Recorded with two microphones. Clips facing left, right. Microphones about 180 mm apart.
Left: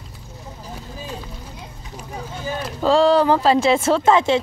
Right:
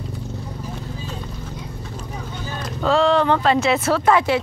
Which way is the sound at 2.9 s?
35° left (ahead or behind).